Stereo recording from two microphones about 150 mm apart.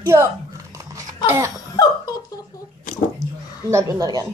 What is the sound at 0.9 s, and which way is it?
Babbling, 20° right (ahead or behind).